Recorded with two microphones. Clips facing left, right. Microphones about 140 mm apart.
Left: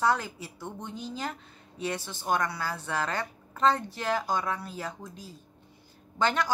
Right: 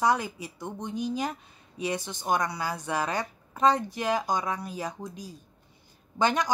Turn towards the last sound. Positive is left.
turn(degrees=-15)  # may be behind; listen again after turning